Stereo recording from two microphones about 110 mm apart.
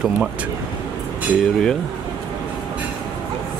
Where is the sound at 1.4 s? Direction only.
5° left (ahead or behind).